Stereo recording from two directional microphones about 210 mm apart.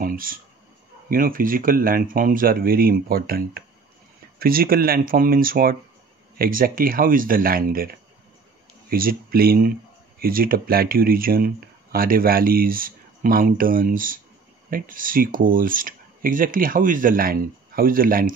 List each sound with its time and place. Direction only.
0.0 s a sound: 40° right (ahead or behind)
1.0 s speech: 40° right (ahead or behind)
8.9 s speech: 45° right (ahead or behind)